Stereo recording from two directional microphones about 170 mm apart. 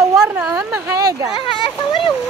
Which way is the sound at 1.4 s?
30° left (ahead or behind).